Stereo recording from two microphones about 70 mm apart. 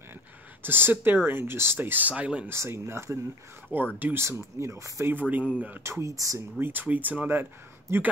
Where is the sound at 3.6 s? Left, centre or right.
Right.